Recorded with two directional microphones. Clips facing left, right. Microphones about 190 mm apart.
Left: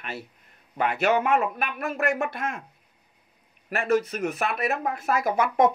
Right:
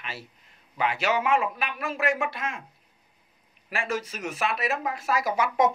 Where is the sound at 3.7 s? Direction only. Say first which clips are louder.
Left 7 dB; 60° left (ahead or behind).